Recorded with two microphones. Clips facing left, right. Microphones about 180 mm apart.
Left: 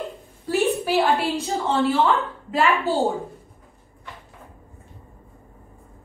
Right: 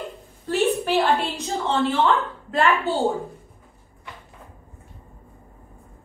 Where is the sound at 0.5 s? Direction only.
10° left (ahead or behind).